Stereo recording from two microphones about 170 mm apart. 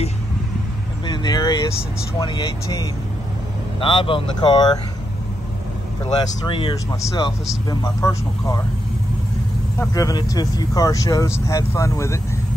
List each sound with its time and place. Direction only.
1.0 s speech: 25° left (ahead or behind)
6.1 s speech: 30° left (ahead or behind)
9.8 s speech: 20° left (ahead or behind)